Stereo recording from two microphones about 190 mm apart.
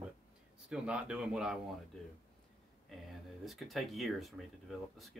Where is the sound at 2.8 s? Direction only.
Centre (ahead or behind).